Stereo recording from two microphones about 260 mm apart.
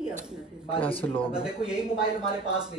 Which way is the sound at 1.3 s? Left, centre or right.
Centre.